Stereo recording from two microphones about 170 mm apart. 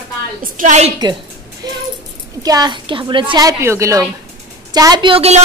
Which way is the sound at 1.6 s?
20° right (ahead or behind).